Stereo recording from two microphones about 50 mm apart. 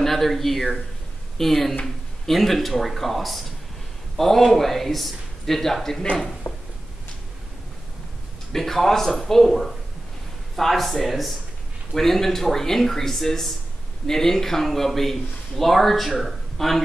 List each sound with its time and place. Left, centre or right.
0.0 s speech: centre
6.5 s a sound: left
8.5 s speech: centre